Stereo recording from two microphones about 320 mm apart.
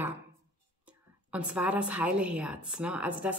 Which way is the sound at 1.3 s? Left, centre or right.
Centre.